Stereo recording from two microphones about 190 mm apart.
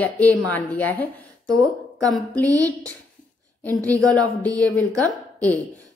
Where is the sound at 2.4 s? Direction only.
15° right (ahead or behind).